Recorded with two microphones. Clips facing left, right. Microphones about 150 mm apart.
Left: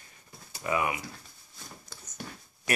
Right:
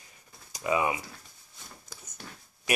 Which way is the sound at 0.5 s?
20° right (ahead or behind).